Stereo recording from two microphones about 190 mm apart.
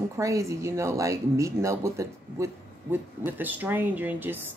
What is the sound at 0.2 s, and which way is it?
Speech, 15° right (ahead or behind).